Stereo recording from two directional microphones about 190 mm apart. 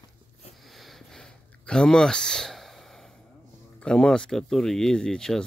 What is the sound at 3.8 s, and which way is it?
Speech, 5° left (ahead or behind).